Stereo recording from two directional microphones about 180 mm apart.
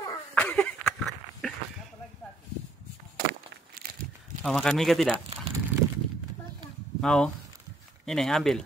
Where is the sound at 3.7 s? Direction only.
55° right (ahead or behind).